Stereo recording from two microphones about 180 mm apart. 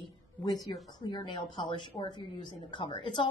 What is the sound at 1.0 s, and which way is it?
A woman's voice, 25° left (ahead or behind).